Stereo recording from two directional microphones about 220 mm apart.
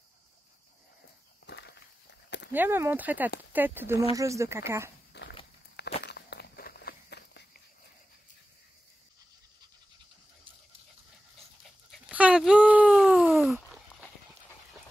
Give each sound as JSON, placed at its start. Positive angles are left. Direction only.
{"t": 1.4, "sound": "walk", "side_deg": 50}
{"t": 2.5, "sound": "speech", "side_deg": -10}
{"t": 5.1, "sound": "walk", "side_deg": 50}
{"t": 11.9, "sound": "dog", "side_deg": -5}